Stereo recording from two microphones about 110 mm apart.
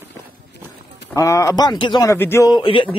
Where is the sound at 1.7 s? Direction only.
45° left (ahead or behind).